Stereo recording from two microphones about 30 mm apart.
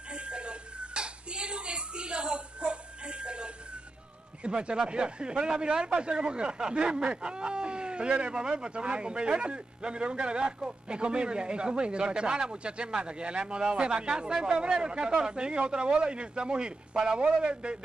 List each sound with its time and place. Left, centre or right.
0.1 s a sound: right
4.4 s a man's voice: right
14.6 s speech: right
17.2 s speech: right